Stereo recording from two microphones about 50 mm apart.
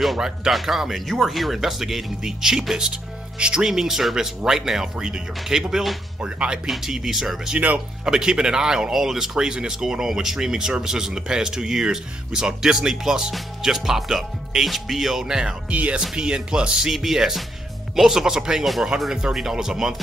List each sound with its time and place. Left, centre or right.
0.2 s speech: centre
6.6 s speech: centre
7.5 s speech: right
8.0 s speech: centre
15.7 s speech: right
16.0 s speech: centre